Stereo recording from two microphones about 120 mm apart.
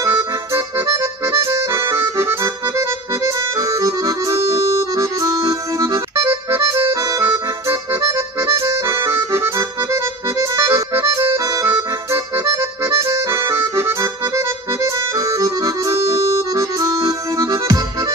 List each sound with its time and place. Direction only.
0.0 s accordion: 25° right (ahead or behind)